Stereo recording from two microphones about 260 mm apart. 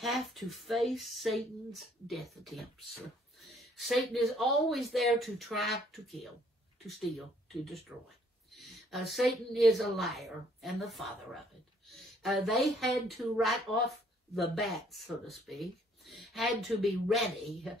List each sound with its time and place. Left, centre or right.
0.0 s speech: centre
6.9 s a woman's voice: centre